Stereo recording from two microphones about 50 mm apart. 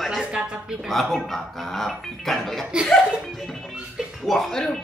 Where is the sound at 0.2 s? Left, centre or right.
Centre.